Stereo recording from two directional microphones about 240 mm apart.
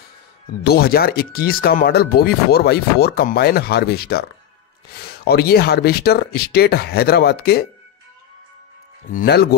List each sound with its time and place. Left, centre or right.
0.7 s speech: left
9.1 s speech: left